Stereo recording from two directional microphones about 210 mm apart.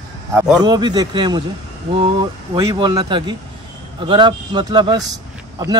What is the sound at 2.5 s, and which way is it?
Speech, 20° right (ahead or behind).